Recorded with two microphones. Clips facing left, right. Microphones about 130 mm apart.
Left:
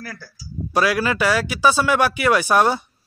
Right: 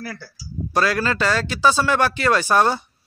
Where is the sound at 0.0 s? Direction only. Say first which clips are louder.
Right 3 dB; 5° right (ahead or behind).